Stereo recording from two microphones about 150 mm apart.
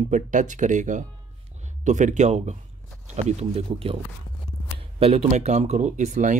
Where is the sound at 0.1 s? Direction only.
55° right (ahead or behind).